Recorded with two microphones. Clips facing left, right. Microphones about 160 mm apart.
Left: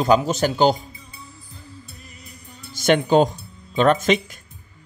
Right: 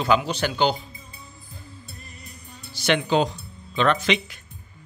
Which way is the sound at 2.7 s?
45° left (ahead or behind).